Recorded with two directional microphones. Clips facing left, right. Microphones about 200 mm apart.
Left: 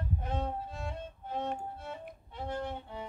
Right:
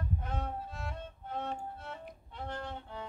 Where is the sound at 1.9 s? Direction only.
15° left (ahead or behind).